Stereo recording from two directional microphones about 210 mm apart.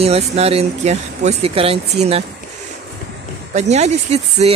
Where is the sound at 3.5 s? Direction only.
35° right (ahead or behind).